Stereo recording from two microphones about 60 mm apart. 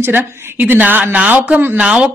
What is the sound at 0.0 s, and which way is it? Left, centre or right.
Speech, right.